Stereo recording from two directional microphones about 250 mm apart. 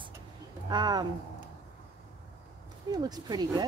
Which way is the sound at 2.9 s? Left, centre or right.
Centre.